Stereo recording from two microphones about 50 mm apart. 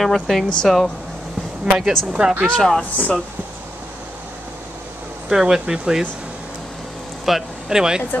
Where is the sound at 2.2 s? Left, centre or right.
Right.